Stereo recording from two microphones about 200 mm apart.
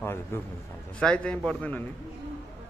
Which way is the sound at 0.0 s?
10° left (ahead or behind).